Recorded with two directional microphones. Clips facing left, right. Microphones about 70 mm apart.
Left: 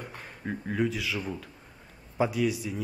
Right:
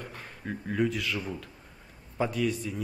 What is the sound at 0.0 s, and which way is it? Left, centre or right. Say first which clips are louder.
Speech: left 1 dB; centre.